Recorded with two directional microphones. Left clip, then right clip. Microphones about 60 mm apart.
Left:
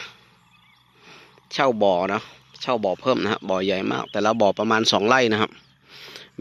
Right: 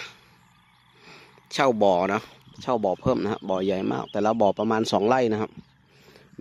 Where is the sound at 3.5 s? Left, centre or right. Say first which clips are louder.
Left 1 dB; right.